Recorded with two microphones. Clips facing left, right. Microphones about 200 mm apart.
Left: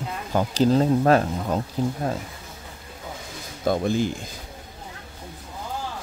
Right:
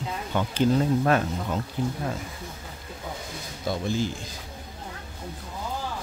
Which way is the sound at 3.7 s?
55° left (ahead or behind).